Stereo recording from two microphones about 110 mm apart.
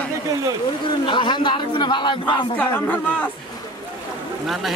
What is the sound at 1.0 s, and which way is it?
Speech, 45° left (ahead or behind).